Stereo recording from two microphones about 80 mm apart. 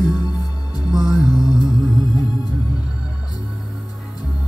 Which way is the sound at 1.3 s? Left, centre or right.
Left.